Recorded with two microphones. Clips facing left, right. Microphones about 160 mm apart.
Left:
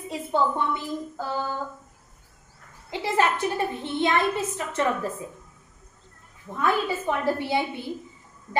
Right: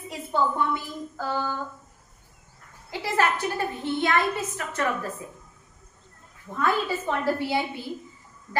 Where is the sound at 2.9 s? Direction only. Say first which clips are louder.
Left 1 dB; 25° left (ahead or behind).